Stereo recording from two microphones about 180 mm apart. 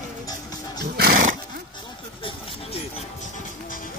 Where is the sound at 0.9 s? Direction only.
55° right (ahead or behind).